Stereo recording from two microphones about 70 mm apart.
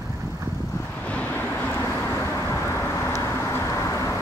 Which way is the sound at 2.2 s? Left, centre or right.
Left.